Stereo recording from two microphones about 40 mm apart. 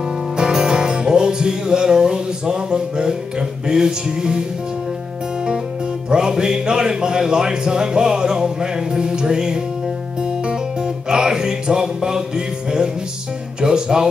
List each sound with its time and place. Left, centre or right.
0.4 s music: centre
6.0 s music: centre
13.6 s speech: centre